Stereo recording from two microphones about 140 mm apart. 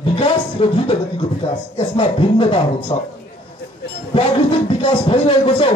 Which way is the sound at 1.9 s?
40° left (ahead or behind).